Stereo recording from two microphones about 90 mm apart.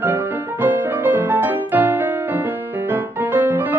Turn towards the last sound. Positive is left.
turn(degrees=-20)  # may be behind; listen again after turning